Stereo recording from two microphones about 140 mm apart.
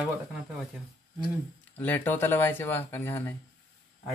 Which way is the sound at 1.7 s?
15° left (ahead or behind).